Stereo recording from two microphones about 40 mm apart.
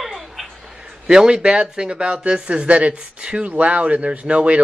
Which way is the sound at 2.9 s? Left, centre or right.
Right.